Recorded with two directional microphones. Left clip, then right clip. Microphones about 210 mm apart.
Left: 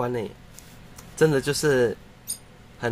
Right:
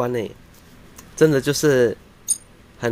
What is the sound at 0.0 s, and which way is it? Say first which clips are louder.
Speech: right 4 dB; 15° right (ahead or behind).